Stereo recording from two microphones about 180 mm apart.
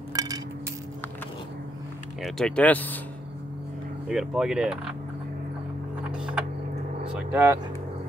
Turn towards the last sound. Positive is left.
turn(degrees=-10)  # may be behind; listen again after turning